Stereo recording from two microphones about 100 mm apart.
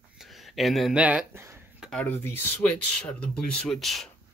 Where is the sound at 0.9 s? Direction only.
10° right (ahead or behind).